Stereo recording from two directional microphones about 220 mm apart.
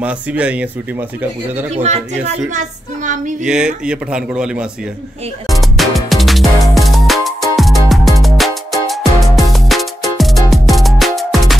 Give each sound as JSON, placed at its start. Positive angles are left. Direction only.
{"t": 0.0, "sound": "speech", "side_deg": -5}
{"t": 1.7, "sound": "a woman's voice", "side_deg": -30}
{"t": 3.4, "sound": "speech", "side_deg": -5}
{"t": 5.5, "sound": "music", "side_deg": 0}